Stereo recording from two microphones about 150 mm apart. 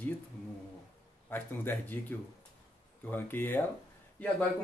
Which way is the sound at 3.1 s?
15° left (ahead or behind).